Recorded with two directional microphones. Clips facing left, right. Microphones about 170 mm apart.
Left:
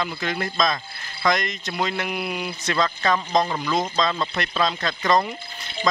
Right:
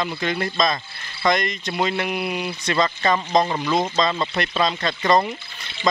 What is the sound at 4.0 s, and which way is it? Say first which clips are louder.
Speech: right 2 dB; centre (ahead or behind).